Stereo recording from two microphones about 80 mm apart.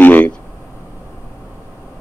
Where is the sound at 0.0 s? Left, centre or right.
Left.